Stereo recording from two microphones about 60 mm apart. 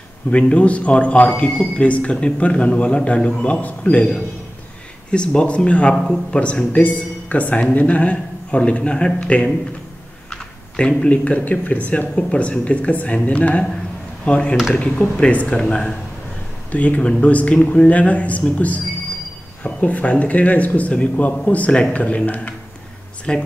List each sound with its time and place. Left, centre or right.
0.3 s speech: centre
5.1 s speech: centre
6.7 s speech: left
16.7 s speech: left